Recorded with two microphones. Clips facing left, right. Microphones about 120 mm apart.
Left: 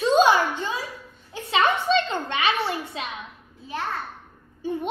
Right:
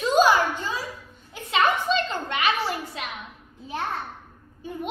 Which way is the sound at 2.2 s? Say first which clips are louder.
Left 1 dB; 25° left (ahead or behind).